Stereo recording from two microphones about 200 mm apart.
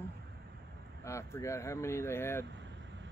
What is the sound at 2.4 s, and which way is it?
Vehicle, 65° right (ahead or behind).